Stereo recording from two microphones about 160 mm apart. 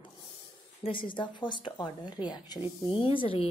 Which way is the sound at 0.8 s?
30° left (ahead or behind).